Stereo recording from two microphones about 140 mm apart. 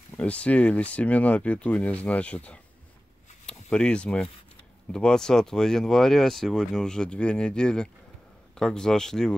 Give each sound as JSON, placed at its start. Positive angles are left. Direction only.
{"t": 0.1, "sound": "speech", "side_deg": 10}